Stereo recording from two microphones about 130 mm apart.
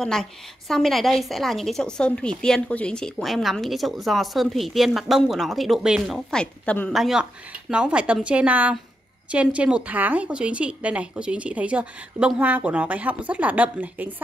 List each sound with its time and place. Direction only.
0.0 s a woman's voice: 5° left (ahead or behind)
6.4 s a woman's voice: 10° left (ahead or behind)
6.9 s a woman's voice: centre (ahead or behind)